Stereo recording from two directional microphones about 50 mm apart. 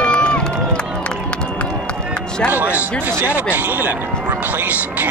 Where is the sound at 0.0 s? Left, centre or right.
Centre.